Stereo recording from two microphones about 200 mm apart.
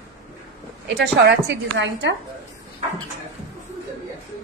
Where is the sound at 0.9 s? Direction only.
60° right (ahead or behind).